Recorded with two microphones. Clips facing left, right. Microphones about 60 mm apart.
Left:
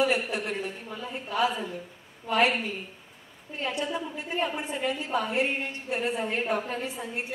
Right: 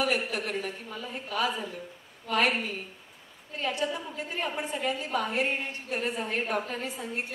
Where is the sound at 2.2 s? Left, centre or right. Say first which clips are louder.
Left 2 dB; left.